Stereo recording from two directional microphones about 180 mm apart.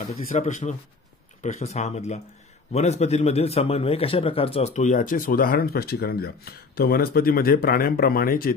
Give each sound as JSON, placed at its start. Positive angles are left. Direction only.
{"t": 0.2, "sound": "a man's voice", "side_deg": 45}